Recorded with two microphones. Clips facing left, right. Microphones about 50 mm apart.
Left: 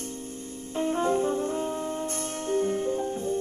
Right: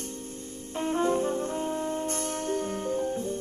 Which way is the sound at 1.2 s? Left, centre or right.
Left.